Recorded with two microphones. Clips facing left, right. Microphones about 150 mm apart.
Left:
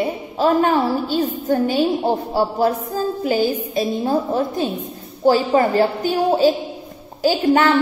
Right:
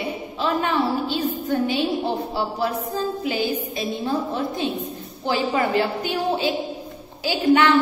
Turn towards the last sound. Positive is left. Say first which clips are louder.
# left 2 dB
turn(degrees=40)  # may be behind; listen again after turning